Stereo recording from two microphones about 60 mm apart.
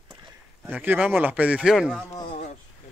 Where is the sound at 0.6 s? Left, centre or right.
Right.